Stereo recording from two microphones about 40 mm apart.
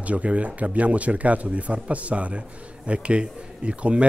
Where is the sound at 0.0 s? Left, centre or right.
Right.